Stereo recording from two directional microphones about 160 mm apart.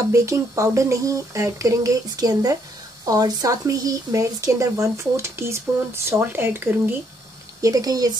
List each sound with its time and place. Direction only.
0.1 s speech: 20° right (ahead or behind)